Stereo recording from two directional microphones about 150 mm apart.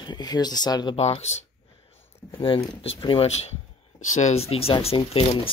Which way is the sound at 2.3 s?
35° left (ahead or behind).